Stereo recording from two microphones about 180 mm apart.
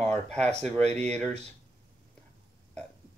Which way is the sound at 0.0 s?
5° left (ahead or behind).